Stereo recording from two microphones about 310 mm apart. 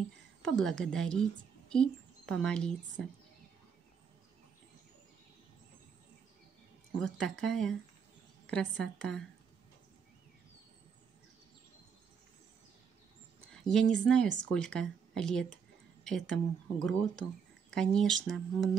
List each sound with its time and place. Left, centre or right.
0.4 s a woman's voice: centre
7.0 s speech: centre
13.5 s a woman's voice: centre